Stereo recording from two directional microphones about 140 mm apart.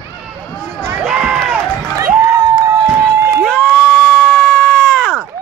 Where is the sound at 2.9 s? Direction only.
20° right (ahead or behind).